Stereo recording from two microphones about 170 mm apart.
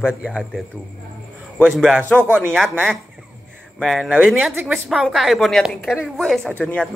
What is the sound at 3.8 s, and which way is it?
Speech, centre (ahead or behind).